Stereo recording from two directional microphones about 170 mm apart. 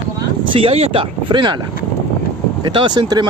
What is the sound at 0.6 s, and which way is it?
Speech, 35° right (ahead or behind).